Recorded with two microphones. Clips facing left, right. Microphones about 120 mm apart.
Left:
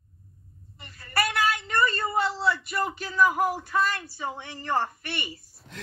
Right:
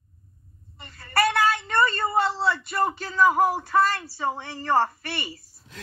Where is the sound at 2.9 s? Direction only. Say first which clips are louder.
Right 2 dB; 40° right (ahead or behind).